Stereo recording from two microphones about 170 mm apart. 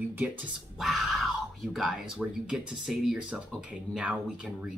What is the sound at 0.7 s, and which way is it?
Speech, centre (ahead or behind).